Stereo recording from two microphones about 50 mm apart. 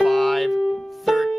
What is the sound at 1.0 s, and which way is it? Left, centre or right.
Music, centre.